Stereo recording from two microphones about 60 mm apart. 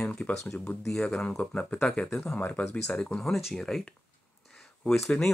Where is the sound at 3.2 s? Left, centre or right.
Centre.